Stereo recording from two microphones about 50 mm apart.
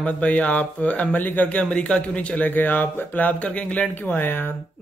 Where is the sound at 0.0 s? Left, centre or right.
Left.